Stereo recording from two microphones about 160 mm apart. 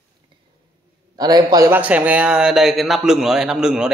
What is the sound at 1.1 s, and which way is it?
Speech, 25° right (ahead or behind).